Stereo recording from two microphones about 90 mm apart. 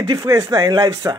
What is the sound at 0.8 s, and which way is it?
Speech, 35° right (ahead or behind).